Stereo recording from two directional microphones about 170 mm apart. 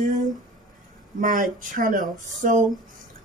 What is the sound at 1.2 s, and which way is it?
Speech, 50° right (ahead or behind).